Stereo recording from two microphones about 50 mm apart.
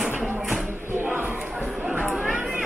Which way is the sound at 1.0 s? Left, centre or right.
Right.